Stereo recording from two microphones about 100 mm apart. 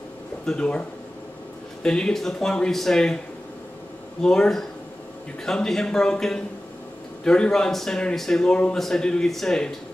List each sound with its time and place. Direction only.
0.5 s speech: 10° left (ahead or behind)
4.2 s a man's voice: 5° left (ahead or behind)